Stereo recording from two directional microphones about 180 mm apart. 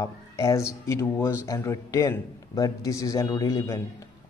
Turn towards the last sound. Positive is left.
turn(degrees=20)  # may be behind; listen again after turning